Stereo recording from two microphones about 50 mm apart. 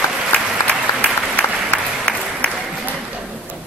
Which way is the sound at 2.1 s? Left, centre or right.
Left.